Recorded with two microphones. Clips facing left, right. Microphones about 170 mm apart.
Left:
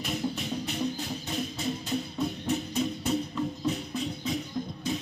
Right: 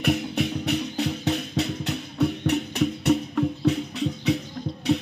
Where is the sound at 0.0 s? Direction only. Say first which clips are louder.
Right 8 dB; 70° right (ahead or behind).